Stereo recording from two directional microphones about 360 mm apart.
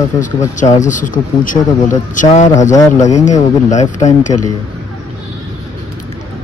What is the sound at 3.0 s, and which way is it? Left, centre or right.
A man's voice, centre.